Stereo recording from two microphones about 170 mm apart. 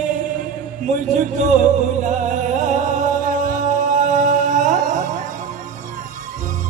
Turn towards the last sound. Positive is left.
turn(degrees=-45)  # may be behind; listen again after turning